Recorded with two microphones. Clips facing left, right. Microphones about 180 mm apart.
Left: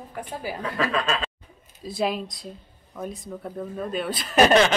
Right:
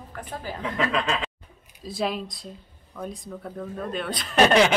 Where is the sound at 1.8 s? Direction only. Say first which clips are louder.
Left 2 dB; centre (ahead or behind).